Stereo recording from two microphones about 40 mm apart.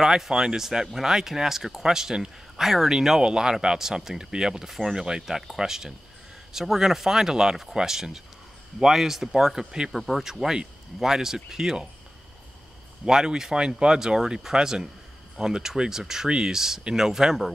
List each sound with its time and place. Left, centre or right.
0.0 s speech: centre
9.9 s speech: centre
10.4 s speech: centre
13.0 s speech: centre
13.9 s speech: centre